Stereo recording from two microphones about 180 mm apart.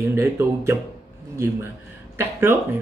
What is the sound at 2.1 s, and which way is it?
Speech, 15° right (ahead or behind).